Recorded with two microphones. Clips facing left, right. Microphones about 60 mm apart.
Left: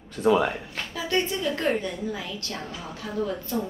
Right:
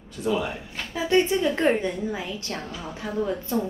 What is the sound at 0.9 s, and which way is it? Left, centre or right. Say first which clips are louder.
A woman's voice: right 6 dB; right.